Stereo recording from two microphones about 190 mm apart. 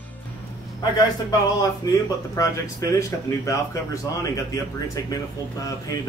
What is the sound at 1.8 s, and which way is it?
Speech, 20° left (ahead or behind).